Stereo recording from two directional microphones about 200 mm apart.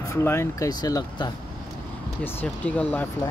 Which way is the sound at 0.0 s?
15° left (ahead or behind).